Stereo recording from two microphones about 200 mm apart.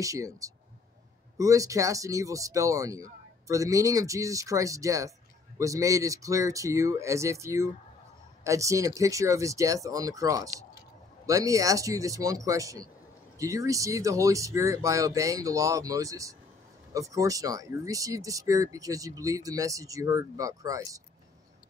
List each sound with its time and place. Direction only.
0.0 s speech: 15° right (ahead or behind)